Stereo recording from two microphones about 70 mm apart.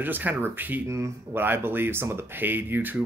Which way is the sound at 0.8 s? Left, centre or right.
Right.